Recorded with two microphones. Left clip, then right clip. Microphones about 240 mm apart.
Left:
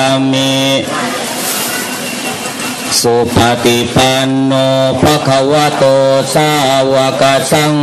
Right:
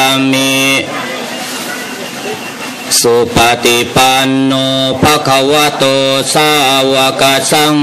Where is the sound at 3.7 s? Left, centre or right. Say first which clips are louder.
Right 2 dB; right.